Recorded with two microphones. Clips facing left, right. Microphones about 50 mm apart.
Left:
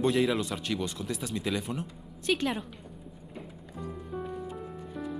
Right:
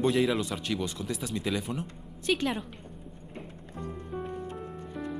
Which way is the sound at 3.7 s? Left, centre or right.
Centre.